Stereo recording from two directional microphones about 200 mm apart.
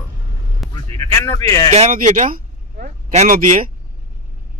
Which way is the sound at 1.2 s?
15° left (ahead or behind).